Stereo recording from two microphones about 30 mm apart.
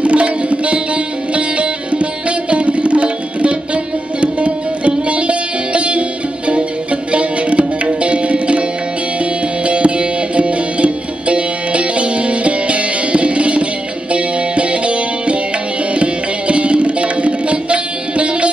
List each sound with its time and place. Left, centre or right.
0.0 s music: right